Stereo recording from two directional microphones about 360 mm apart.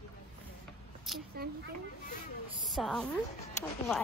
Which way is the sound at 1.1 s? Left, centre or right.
Centre.